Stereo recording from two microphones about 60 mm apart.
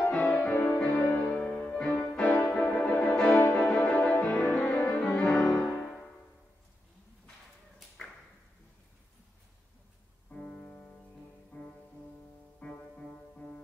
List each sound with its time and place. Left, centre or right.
0.1 s music: left
3.3 s music: left
10.3 s music: left
12.6 s music: centre